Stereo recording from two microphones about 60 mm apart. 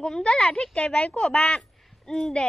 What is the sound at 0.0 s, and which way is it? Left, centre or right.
A woman's voice, centre.